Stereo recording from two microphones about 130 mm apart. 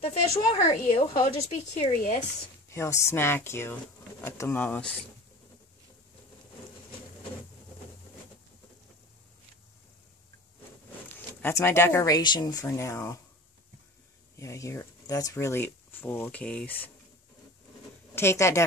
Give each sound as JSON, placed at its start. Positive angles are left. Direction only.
{"t": 0.7, "sound": "a woman's voice", "side_deg": 40}
{"t": 1.2, "sound": "a woman's voice", "side_deg": 60}
{"t": 2.7, "sound": "speech", "side_deg": 20}
{"t": 11.1, "sound": "speech", "side_deg": 15}
{"t": 12.2, "sound": "speech", "side_deg": 35}
{"t": 14.3, "sound": "speech", "side_deg": 25}
{"t": 18.1, "sound": "speech", "side_deg": 20}